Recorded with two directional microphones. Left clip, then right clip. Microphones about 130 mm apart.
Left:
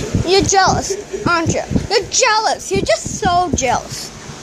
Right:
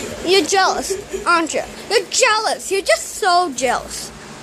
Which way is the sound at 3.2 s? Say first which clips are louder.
Even; 15° right (ahead or behind).